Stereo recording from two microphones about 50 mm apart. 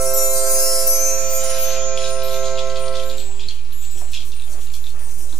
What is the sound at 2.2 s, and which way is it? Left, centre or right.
Music, centre.